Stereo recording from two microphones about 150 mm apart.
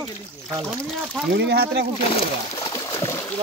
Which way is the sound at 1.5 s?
90° right.